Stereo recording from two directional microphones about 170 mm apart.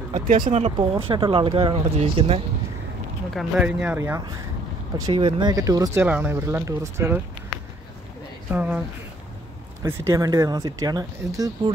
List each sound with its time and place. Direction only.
0.1 s speech: 50° right (ahead or behind)
1.1 s speech: 30° right (ahead or behind)
3.3 s speech: 5° right (ahead or behind)
4.9 s speech: 25° right (ahead or behind)
8.5 s speech: 10° right (ahead or behind)
9.8 s speech: 15° right (ahead or behind)